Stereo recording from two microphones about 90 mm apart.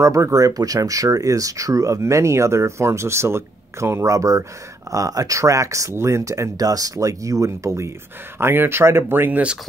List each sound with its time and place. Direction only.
0.0 s speech: 35° right (ahead or behind)